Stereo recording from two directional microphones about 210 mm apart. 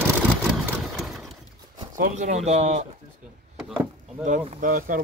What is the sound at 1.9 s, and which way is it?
Speech, 40° right (ahead or behind).